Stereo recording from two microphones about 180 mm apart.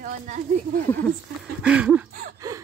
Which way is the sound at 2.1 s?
50° right (ahead or behind).